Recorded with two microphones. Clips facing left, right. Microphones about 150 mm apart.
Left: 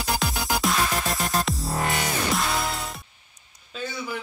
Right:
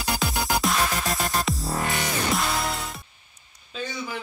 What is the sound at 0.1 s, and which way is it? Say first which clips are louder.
Music: right 1 dB; centre (ahead or behind).